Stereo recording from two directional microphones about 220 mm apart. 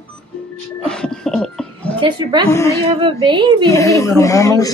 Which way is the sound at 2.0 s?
20° right (ahead or behind).